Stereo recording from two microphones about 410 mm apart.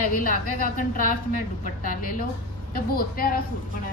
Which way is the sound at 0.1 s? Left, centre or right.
Centre.